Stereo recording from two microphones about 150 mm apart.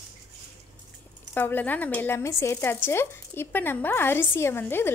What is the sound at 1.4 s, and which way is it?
Speech, 15° left (ahead or behind).